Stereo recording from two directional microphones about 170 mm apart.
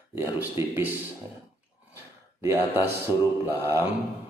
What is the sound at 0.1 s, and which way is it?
Speech, 10° right (ahead or behind).